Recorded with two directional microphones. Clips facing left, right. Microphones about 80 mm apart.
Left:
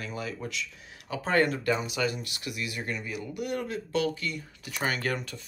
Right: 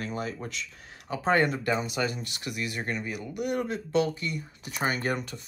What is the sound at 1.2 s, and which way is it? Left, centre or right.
Speech, right.